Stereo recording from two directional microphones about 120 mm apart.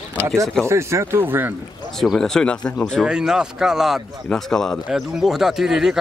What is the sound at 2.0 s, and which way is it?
Speech, 5° left (ahead or behind).